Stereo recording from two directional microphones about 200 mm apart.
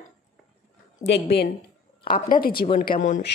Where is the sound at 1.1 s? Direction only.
55° left (ahead or behind).